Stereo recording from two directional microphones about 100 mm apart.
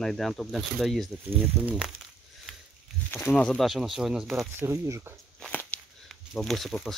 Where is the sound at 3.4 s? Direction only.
10° left (ahead or behind).